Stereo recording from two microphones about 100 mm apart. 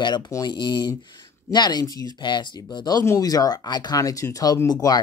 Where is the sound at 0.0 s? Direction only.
50° left (ahead or behind).